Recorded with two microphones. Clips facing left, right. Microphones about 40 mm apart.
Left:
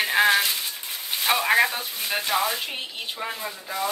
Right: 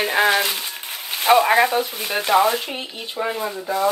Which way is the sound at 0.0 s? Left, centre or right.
Centre.